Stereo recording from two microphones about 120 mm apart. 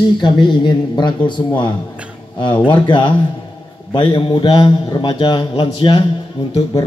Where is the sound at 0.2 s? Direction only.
40° left (ahead or behind).